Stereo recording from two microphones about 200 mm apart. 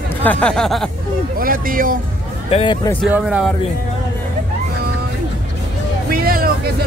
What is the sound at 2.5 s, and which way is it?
Speech, 25° left (ahead or behind).